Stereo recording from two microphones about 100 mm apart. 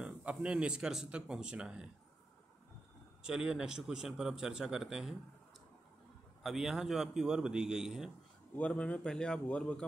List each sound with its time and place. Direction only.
0.0 s speech: 10° right (ahead or behind)
3.3 s a man's voice: 5° right (ahead or behind)
6.4 s a man's voice: 5° right (ahead or behind)
8.5 s a man's voice: 15° left (ahead or behind)